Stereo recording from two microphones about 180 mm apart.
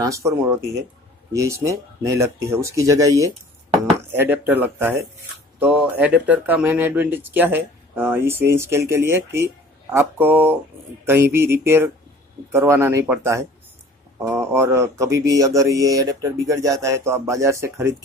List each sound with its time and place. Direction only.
0.0 s speech: 15° right (ahead or behind)